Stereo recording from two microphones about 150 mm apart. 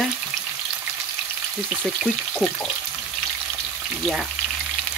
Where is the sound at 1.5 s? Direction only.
Centre (ahead or behind).